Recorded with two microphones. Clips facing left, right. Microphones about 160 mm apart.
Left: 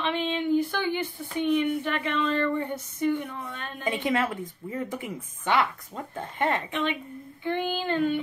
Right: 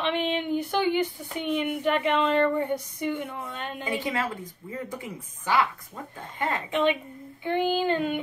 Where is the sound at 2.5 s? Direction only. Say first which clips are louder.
Right 3 dB; 15° right (ahead or behind).